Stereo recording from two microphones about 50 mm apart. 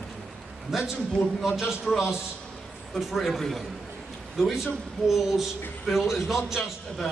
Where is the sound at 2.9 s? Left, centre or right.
Centre.